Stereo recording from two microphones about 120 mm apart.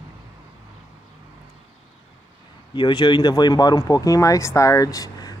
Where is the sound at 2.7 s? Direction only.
40° left (ahead or behind).